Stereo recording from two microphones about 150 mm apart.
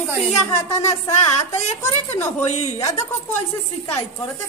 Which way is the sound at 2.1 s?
15° left (ahead or behind).